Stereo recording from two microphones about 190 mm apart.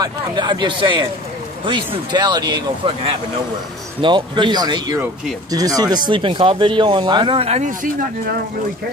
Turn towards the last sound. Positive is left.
turn(degrees=-40)  # may be behind; listen again after turning